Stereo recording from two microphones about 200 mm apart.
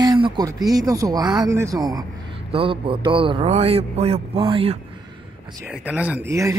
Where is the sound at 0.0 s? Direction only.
20° right (ahead or behind).